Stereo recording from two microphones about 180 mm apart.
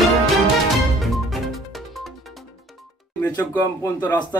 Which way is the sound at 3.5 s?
15° left (ahead or behind).